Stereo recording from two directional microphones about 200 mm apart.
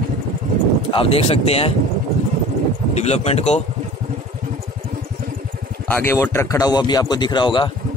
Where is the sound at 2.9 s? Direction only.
35° left (ahead or behind).